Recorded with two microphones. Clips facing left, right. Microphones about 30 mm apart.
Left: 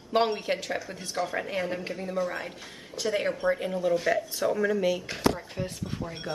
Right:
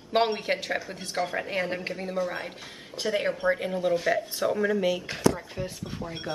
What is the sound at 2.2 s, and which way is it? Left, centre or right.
Speech, centre.